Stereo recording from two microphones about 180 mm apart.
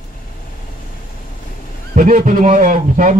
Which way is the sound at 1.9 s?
45° right (ahead or behind).